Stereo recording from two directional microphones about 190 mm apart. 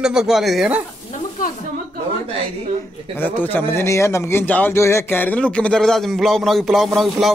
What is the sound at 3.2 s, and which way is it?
A man's voice, 10° left (ahead or behind).